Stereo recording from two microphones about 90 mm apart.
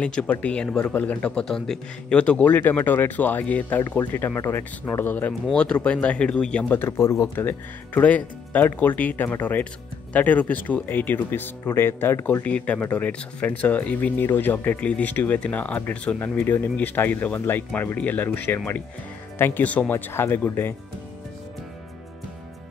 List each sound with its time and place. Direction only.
0.0 s speech: 15° left (ahead or behind)
6.7 s speech: 25° left (ahead or behind)
16.3 s speech: 25° left (ahead or behind)
20.1 s speech: 25° left (ahead or behind)